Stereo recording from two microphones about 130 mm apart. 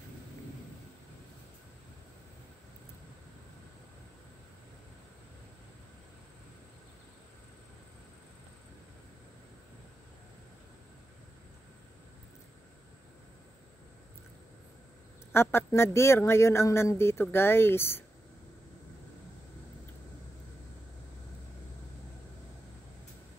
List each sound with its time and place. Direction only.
15.3 s speech: 20° left (ahead or behind)